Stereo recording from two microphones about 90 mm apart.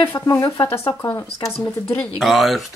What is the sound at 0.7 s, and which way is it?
Speech, 30° left (ahead or behind).